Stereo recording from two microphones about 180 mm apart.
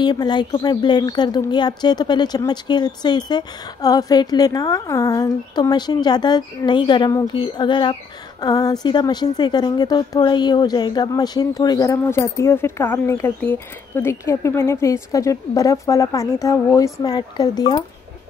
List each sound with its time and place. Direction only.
0.0 s a woman's voice: 25° left (ahead or behind)